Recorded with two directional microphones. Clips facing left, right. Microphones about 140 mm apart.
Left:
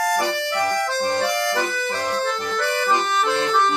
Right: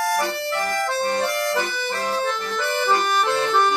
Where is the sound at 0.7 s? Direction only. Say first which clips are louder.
Left 1 dB; centre (ahead or behind).